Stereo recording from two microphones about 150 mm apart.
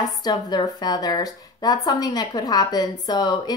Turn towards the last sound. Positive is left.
turn(degrees=25)  # may be behind; listen again after turning